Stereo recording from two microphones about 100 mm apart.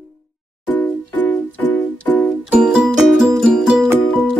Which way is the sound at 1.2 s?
15° left (ahead or behind).